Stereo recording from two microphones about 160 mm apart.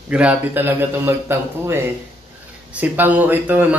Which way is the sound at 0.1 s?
10° right (ahead or behind).